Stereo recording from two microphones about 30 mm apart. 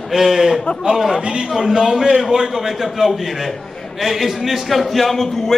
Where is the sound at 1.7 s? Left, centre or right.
Right.